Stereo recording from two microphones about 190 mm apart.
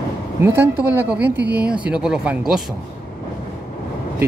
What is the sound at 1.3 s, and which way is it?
Speech, 65° right (ahead or behind).